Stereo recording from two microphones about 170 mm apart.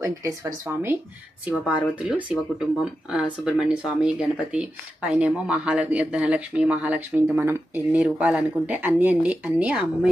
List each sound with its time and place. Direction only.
0.0 s speech: 20° right (ahead or behind)
1.7 s speech: 5° right (ahead or behind)